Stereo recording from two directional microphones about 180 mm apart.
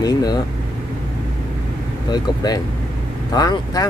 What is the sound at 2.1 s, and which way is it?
Speech, 20° left (ahead or behind).